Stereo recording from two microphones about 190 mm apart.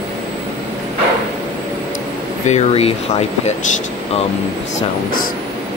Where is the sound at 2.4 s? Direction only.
35° left (ahead or behind).